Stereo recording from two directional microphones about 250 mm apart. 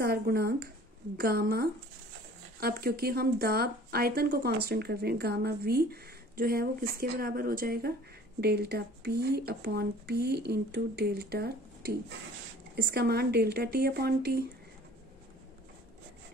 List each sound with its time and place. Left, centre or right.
0.0 s speech: right